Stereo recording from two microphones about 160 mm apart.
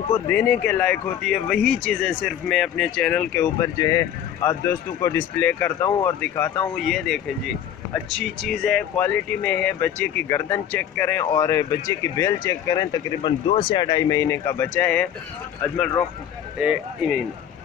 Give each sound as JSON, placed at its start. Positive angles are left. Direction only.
{"t": 0.1, "sound": "speech", "side_deg": 10}
{"t": 3.5, "sound": "speech", "side_deg": 20}
{"t": 5.7, "sound": "speech", "side_deg": 25}
{"t": 16.5, "sound": "speech", "side_deg": -5}